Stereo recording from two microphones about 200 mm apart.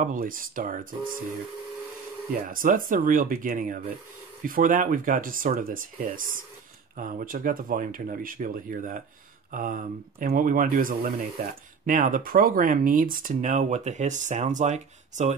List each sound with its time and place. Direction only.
0.0 s speech: 45° right (ahead or behind)
2.3 s speech: 45° right (ahead or behind)